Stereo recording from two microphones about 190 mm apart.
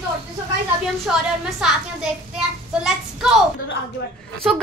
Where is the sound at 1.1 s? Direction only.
5° right (ahead or behind).